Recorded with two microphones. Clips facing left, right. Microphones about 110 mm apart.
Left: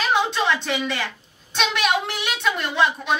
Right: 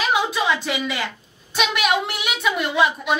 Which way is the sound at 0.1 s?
5° right (ahead or behind).